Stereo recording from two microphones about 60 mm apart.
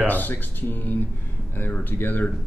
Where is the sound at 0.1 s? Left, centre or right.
Left.